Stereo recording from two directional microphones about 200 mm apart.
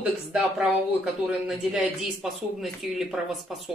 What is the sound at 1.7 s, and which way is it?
A woman's voice, centre (ahead or behind).